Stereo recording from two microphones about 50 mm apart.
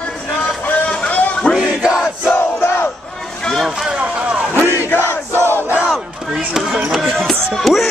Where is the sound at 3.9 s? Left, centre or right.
Right.